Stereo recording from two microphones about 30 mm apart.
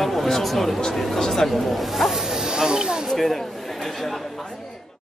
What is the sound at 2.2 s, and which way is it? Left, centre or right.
Snake, right.